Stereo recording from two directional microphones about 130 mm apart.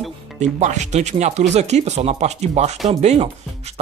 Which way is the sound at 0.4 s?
65° right (ahead or behind).